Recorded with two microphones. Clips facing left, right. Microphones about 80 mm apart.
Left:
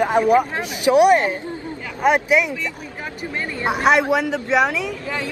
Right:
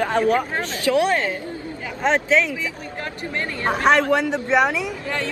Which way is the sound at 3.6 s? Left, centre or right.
Centre.